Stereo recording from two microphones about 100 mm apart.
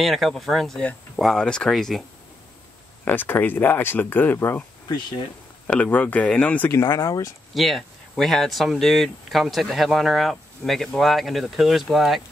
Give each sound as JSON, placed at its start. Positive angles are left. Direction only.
{"t": 0.0, "sound": "speech", "side_deg": 0}
{"t": 3.1, "sound": "speech", "side_deg": 20}
{"t": 5.7, "sound": "speech", "side_deg": 15}
{"t": 6.7, "sound": "speech", "side_deg": 25}
{"t": 7.5, "sound": "speech", "side_deg": 0}